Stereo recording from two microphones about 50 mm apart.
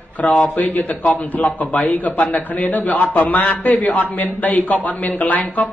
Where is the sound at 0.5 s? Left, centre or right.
Left.